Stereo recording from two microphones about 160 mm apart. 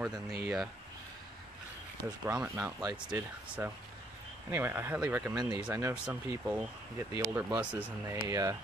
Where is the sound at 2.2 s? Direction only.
10° right (ahead or behind).